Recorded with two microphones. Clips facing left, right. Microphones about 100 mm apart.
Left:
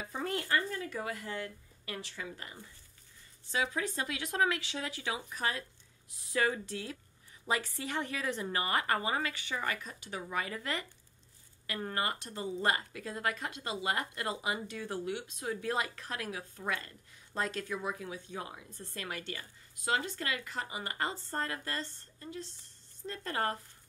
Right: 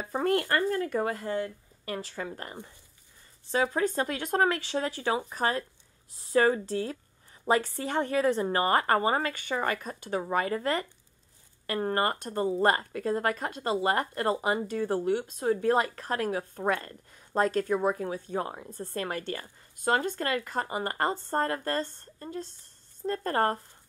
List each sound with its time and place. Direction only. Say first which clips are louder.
0.0 s a woman's voice: right 9 dB; 50° right (ahead or behind)